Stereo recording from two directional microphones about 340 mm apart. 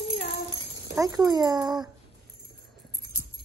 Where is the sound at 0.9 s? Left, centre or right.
Centre.